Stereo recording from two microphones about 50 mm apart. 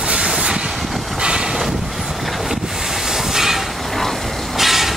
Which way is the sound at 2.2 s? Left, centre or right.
Centre.